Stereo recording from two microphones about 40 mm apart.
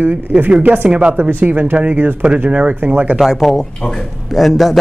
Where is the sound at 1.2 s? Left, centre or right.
Right.